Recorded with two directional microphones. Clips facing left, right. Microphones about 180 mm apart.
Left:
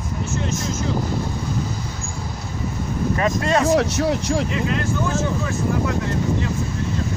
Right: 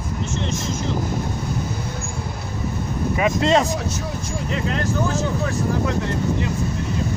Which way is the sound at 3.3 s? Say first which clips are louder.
Right 6 dB; 25° right (ahead or behind).